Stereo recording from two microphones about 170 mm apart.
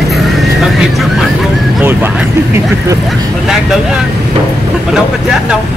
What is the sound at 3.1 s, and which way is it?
Speech, centre (ahead or behind).